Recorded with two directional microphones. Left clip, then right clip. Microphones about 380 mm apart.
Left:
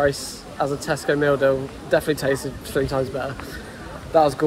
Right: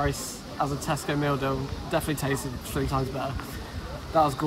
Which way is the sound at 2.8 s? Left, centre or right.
Left.